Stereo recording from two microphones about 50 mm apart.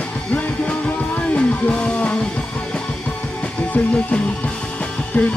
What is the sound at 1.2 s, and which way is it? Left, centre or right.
Music, left.